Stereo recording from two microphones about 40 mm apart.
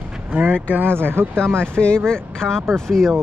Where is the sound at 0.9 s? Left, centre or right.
Right.